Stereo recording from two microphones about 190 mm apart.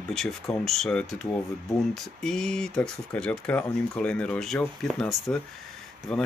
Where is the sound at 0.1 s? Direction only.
Centre (ahead or behind).